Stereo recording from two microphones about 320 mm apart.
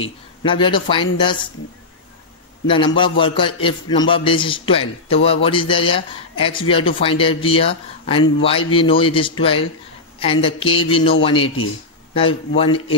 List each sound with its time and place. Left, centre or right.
0.4 s a man's voice: centre
2.6 s a man's voice: centre